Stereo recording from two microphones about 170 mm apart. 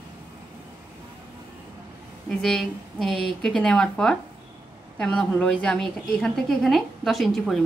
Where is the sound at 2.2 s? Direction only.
5° left (ahead or behind).